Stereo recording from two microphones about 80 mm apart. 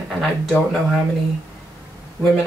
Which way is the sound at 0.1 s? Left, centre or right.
Centre.